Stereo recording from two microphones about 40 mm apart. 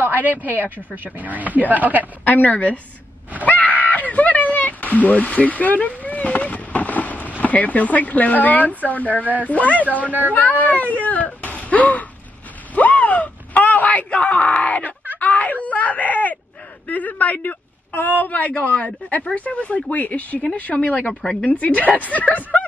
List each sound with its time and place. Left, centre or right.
0.0 s a woman's voice: right
2.2 s speech: left
3.4 s a sound: left
9.2 s a woman's voice: right
9.5 s speech: left
12.7 s a sound: left
16.8 s speech: left